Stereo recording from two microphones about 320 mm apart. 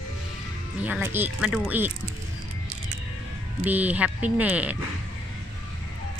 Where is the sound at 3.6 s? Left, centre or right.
Centre.